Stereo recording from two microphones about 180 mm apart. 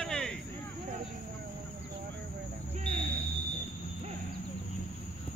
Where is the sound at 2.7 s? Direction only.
30° right (ahead or behind).